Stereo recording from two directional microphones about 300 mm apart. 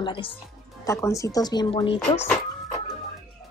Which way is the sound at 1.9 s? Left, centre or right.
Centre.